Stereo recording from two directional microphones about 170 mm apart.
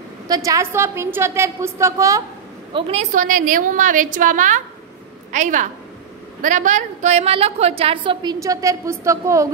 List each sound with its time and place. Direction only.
0.3 s a woman's voice: 20° right (ahead or behind)
2.7 s a woman's voice: 40° right (ahead or behind); by 9.5 s 20° right (ahead or behind)